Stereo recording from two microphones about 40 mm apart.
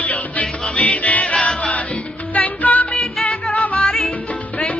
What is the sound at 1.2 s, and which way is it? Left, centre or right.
Music, left.